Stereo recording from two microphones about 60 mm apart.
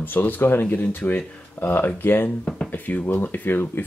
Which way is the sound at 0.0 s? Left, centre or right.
Left.